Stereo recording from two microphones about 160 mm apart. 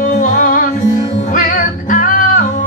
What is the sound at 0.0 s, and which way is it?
Music, 55° left (ahead or behind).